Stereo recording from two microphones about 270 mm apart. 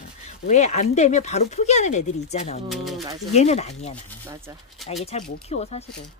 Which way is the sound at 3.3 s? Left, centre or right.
Left.